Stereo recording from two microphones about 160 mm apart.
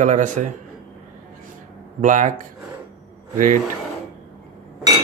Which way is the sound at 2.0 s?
50° right (ahead or behind).